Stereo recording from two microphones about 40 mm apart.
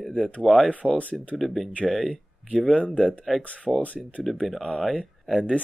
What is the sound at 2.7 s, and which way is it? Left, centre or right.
Speech, left.